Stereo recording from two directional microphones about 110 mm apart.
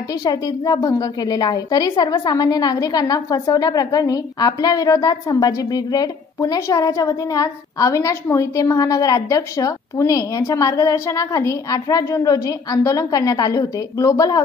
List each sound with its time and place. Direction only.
0.2 s a woman's voice: 35° left (ahead or behind)